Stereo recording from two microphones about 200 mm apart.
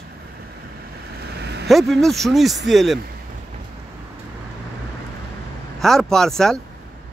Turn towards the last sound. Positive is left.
turn(degrees=0)  # may be behind; listen again after turning